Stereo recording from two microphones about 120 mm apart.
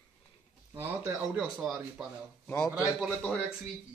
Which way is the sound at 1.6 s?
Centre (ahead or behind).